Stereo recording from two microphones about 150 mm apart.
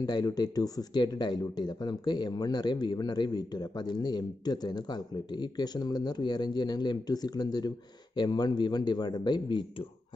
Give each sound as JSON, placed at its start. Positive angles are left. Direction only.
{"t": 0.0, "sound": "speech", "side_deg": 25}